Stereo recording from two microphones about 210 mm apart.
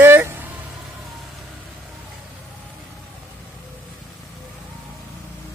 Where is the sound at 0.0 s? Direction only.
10° right (ahead or behind).